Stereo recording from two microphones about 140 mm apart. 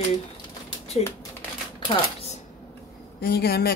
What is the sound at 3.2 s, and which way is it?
Speech, 90° left.